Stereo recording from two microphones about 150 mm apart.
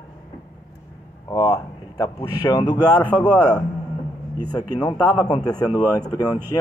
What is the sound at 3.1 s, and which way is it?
Speech, 10° left (ahead or behind).